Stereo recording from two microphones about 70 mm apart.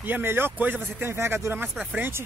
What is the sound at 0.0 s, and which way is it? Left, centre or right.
Speech, right.